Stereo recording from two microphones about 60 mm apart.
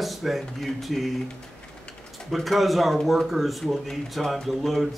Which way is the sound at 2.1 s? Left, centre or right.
Centre.